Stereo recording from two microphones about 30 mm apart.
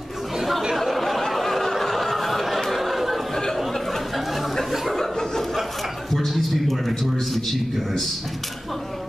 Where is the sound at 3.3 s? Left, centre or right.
Centre.